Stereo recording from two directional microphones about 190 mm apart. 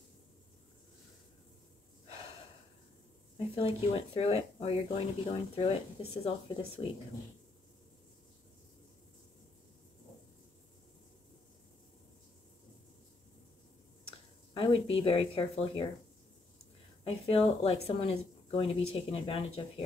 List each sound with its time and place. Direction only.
3.3 s speech: 30° left (ahead or behind)
14.5 s speech: 30° left (ahead or behind)
17.0 s speech: 30° left (ahead or behind)